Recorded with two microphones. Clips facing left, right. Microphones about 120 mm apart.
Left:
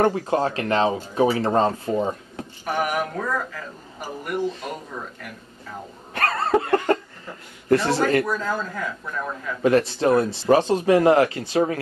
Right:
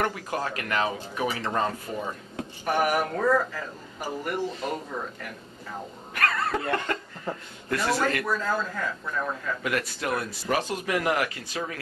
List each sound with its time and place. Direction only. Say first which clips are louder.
0.0 s speech: left 8 dB; 30° left (ahead or behind)
2.6 s a man's voice: even; centre (ahead or behind)
6.1 s a sound: left 6 dB; 30° left (ahead or behind)
7.7 s speech: left 7 dB; 25° left (ahead or behind)
8.3 s a man's voice: left 2 dB; centre (ahead or behind)
9.6 s speech: left 11 dB; 30° left (ahead or behind)